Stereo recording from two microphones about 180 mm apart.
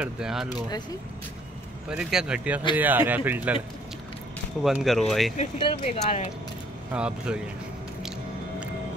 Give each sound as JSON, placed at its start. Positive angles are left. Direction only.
{"t": 0.0, "sound": "speech", "side_deg": -5}
{"t": 1.9, "sound": "speech", "side_deg": -5}
{"t": 4.6, "sound": "speech", "side_deg": 0}
{"t": 5.4, "sound": "speech", "side_deg": 35}
{"t": 6.9, "sound": "speech", "side_deg": -5}